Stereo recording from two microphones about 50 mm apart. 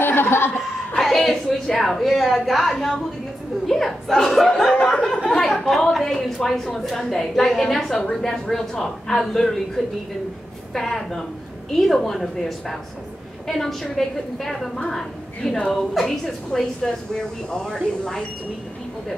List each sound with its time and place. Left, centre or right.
0.0 s chuckle: left
0.9 s a woman's voice: centre